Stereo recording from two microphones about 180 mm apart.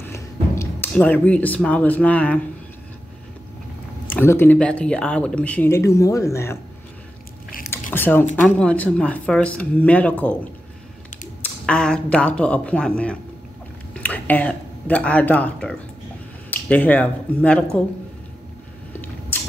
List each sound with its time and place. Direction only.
0.0 s speech: 15° left (ahead or behind)
4.1 s speech: 10° left (ahead or behind)
7.9 s speech: 10° left (ahead or behind)